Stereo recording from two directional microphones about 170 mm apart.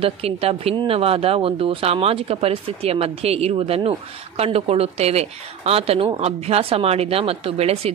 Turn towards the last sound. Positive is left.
turn(degrees=-35)  # may be behind; listen again after turning